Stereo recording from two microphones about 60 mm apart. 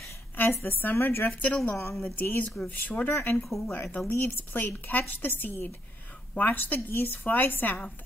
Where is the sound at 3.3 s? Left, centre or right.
Centre.